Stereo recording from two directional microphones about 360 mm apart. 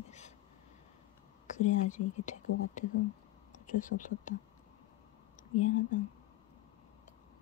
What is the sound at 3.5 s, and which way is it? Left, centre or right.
Speech, left.